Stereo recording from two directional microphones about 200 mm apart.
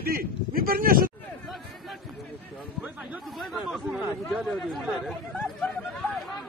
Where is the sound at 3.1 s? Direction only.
Centre (ahead or behind).